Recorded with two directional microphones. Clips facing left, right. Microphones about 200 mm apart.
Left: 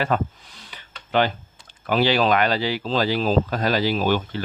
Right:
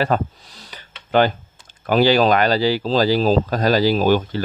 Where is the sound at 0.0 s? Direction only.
40° right (ahead or behind).